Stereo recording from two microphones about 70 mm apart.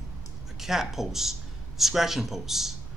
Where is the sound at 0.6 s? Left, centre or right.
Centre.